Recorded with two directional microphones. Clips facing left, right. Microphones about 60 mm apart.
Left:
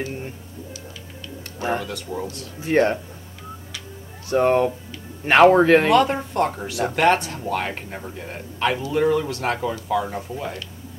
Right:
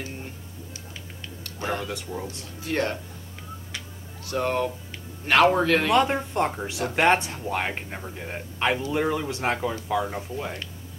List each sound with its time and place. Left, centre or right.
1.4 s a sound: left
2.1 s speech: centre
2.6 s speech: left
4.3 s speech: left
5.9 s a man's voice: centre
9.6 s speech: centre